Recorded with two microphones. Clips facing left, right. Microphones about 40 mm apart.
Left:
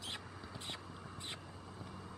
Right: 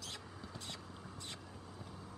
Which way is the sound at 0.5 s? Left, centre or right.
Left.